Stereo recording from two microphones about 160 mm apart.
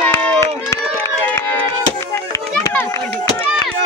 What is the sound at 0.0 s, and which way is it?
Run, 15° left (ahead or behind).